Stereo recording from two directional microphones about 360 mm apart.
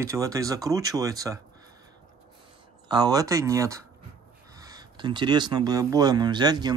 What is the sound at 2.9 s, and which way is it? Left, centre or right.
Speech, centre.